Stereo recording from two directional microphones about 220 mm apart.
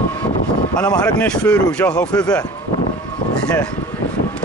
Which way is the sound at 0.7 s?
15° left (ahead or behind).